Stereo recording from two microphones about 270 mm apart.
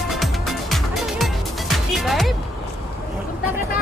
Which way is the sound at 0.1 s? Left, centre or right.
Centre.